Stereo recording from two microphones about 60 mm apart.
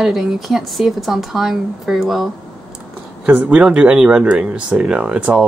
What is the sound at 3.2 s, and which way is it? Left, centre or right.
Speech, right.